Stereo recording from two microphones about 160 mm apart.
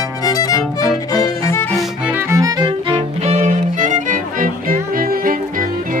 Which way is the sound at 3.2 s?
45° right (ahead or behind).